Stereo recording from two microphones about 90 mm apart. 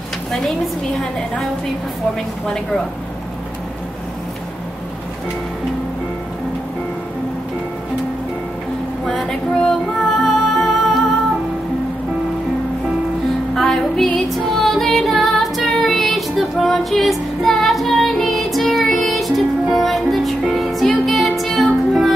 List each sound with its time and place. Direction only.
2.4 s speech: 5° left (ahead or behind)
9.0 s female singing: 5° left (ahead or behind)
9.9 s music: 5° left (ahead or behind)
13.6 s music: 5° left (ahead or behind)